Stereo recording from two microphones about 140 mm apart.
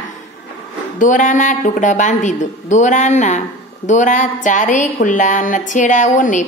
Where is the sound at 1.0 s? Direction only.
65° left (ahead or behind).